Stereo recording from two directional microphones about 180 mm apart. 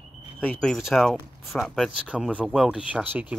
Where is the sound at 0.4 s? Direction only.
5° left (ahead or behind).